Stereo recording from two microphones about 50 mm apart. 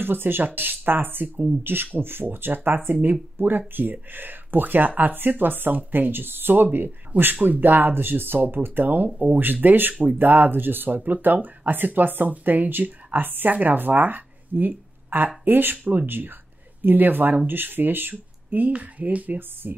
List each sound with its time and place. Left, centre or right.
0.0 s speech: right
7.1 s speech: right